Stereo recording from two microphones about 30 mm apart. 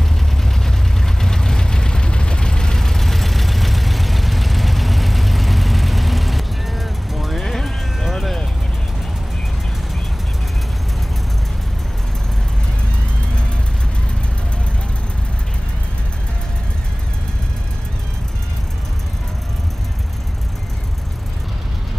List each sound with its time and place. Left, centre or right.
0.0 s vehicle: centre
2.8 s vehicle: centre
7.4 s vehicle: centre